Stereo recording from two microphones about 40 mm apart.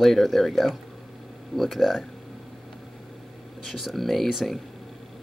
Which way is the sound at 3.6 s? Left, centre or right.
Centre.